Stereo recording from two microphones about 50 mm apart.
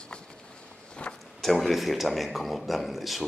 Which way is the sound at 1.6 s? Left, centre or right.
Centre.